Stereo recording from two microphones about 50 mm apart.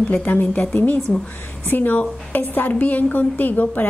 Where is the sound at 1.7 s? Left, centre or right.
Left.